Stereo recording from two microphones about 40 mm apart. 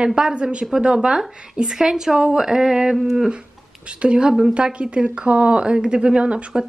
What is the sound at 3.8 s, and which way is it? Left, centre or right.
A woman's voice, right.